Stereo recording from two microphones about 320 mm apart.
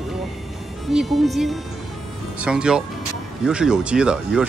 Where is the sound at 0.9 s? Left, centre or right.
Centre.